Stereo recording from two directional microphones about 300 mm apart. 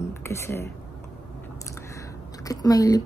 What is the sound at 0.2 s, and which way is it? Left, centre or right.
Speech, centre.